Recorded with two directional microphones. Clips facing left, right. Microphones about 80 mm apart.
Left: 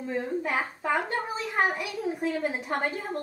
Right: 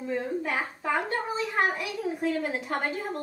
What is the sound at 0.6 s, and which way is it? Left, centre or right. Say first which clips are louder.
A child's voice: left 1 dB; centre.